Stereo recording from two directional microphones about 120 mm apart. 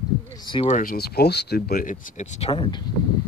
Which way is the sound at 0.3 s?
40° left (ahead or behind).